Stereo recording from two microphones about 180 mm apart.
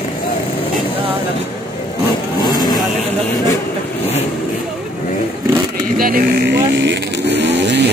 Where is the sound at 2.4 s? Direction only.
25° left (ahead or behind).